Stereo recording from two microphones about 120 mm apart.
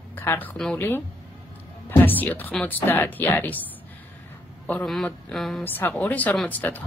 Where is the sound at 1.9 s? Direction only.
15° left (ahead or behind).